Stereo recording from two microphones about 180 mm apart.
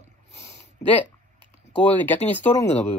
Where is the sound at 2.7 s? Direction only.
35° left (ahead or behind).